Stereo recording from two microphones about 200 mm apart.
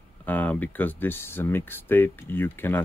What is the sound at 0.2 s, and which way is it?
Speech, 10° left (ahead or behind).